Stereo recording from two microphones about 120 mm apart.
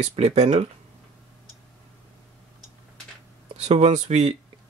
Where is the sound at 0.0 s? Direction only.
60° right (ahead or behind).